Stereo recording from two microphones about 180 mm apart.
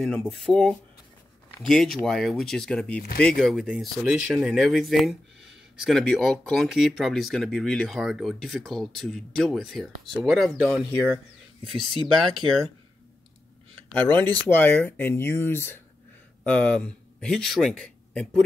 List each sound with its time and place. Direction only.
0.0 s speech: 5° left (ahead or behind)
13.7 s speech: 10° left (ahead or behind)